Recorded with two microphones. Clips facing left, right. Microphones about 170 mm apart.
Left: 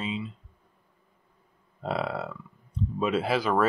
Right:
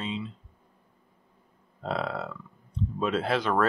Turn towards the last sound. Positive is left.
turn(degrees=5)  # may be behind; listen again after turning